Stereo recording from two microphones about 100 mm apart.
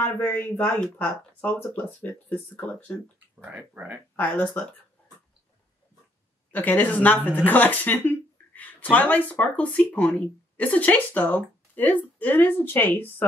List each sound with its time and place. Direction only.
0.2 s speech: 15° left (ahead or behind)
3.4 s speech: 15° right (ahead or behind)
4.2 s speech: 15° left (ahead or behind)
6.5 s a woman's voice: 15° left (ahead or behind)